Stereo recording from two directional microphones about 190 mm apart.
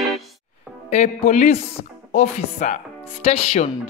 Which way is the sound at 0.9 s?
40° left (ahead or behind).